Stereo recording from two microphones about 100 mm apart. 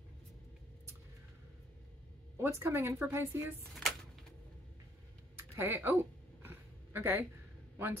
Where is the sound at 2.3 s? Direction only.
25° right (ahead or behind).